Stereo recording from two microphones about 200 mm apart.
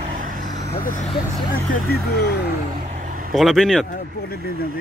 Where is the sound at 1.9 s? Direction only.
55° left (ahead or behind).